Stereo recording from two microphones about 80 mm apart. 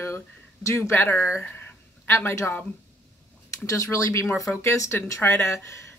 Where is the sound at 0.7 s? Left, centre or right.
Left.